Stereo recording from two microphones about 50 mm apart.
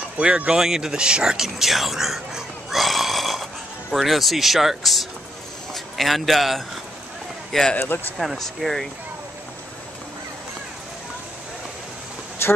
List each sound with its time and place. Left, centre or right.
0.5 s speech: centre
7.5 s a man's voice: centre
12.4 s a sound: left